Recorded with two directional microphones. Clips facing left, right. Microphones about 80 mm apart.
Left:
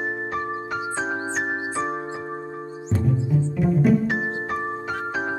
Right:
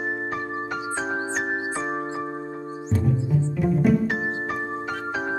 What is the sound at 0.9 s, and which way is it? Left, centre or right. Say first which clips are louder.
Music: right 1 dB; centre.